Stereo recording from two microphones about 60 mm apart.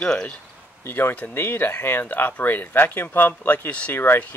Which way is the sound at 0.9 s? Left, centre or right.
Left.